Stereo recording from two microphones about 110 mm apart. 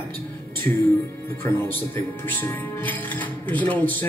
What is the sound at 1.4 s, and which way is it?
Speech, 20° left (ahead or behind).